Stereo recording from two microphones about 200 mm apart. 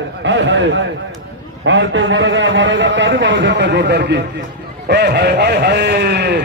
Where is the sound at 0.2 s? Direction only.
65° right (ahead or behind).